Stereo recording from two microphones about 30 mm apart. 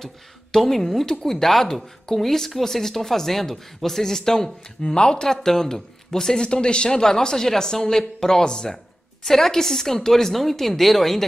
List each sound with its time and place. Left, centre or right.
0.0 s speech: centre
4.9 s speech: left
6.4 s speech: left
9.2 s speech: centre